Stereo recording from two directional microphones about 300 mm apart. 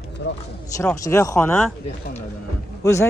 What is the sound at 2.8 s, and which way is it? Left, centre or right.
Speech, centre.